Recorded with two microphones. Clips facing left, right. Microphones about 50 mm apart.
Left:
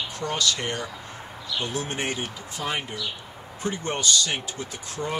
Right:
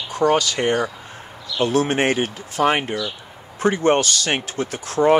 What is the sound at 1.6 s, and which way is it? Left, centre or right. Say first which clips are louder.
Speech: right 12 dB; right.